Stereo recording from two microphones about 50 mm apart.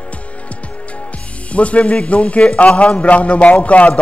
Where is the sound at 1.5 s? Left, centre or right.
Left.